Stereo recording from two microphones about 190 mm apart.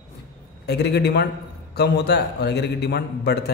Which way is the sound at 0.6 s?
60° left (ahead or behind).